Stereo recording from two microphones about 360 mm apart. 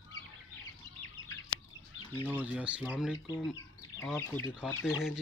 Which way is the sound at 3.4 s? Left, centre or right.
Centre.